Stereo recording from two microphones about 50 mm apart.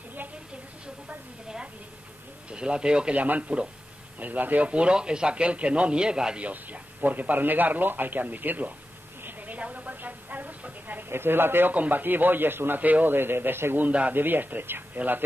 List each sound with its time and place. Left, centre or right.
2.5 s a man's voice: centre
3.2 s a man's voice: right
4.6 s a man's voice: right
6.4 s a man's voice: right
9.2 s a sound: right
11.1 s speech: right
11.7 s a man's voice: right
13.8 s a man's voice: right
14.1 s a man's voice: right